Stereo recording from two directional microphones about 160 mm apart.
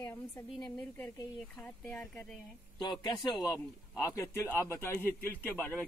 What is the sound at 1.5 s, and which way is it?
Speech, 5° left (ahead or behind).